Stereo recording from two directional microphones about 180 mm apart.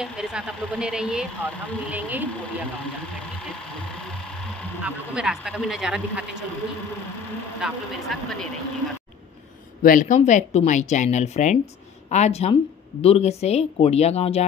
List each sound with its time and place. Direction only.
0.0 s speech: 5° right (ahead or behind)
4.8 s speech: 5° right (ahead or behind)
7.6 s speech: centre (ahead or behind)
9.8 s speech: 45° left (ahead or behind)